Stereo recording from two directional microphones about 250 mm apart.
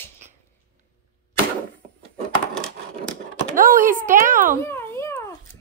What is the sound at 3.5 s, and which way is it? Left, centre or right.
Speech, right.